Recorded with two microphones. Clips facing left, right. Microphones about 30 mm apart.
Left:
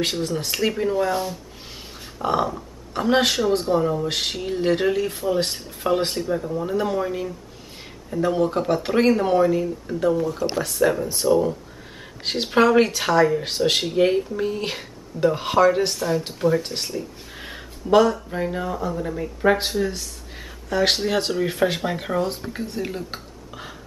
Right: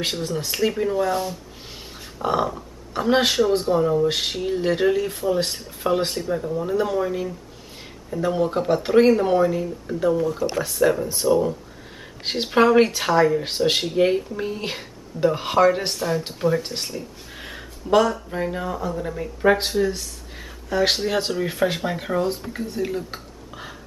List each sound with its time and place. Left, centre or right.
0.0 s speech: centre